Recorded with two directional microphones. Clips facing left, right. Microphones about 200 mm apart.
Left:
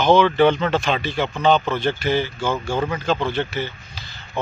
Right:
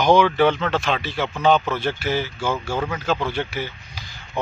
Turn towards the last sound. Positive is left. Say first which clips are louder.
# left 2 dB
turn(degrees=-10)  # may be behind; listen again after turning